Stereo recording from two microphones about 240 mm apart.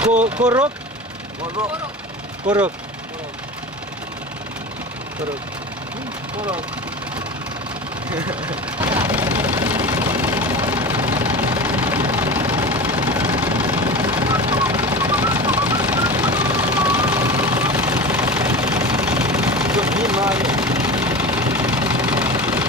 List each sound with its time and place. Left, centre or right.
0.1 s speech: right
2.4 s speech: centre
8.1 s speech: centre
8.7 s vehicle: centre
14.0 s vehicle: centre